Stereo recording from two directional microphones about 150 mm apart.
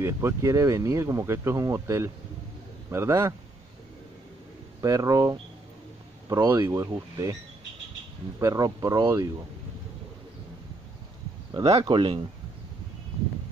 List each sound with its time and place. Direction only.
0.0 s a man's voice: 15° right (ahead or behind)
4.8 s speech: 25° right (ahead or behind)
8.4 s speech: 20° right (ahead or behind)
11.6 s speech: 35° right (ahead or behind)